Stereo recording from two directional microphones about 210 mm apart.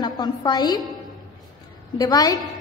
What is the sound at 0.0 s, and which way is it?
Speech, 20° left (ahead or behind).